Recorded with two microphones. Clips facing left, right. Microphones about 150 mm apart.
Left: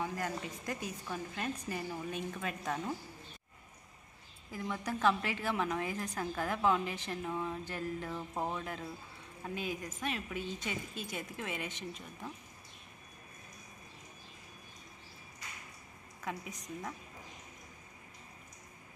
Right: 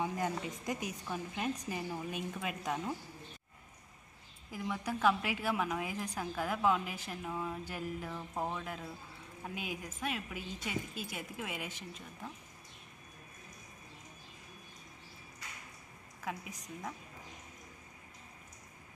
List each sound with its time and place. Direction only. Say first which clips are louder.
0.0 s a woman's voice: right 2 dB; 20° right (ahead or behind)
4.5 s a woman's voice: even; 10° right (ahead or behind)
8.1 s speech: left 1 dB; 5° left (ahead or behind)
16.2 s speech: left 1 dB; 5° right (ahead or behind)